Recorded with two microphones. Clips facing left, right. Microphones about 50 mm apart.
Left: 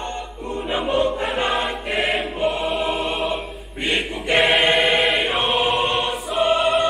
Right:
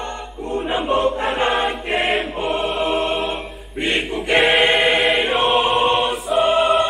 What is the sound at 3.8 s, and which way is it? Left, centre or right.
Choir, centre.